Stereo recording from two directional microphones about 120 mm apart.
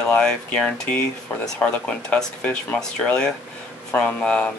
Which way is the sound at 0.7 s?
10° left (ahead or behind).